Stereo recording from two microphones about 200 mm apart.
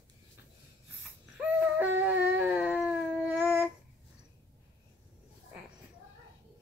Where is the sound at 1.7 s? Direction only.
10° right (ahead or behind).